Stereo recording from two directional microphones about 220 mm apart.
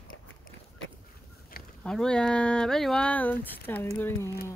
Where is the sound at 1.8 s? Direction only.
5° left (ahead or behind).